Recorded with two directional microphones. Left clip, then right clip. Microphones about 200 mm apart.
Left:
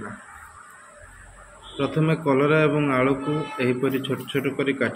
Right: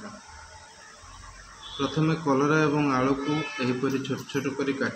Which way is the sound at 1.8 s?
15° left (ahead or behind).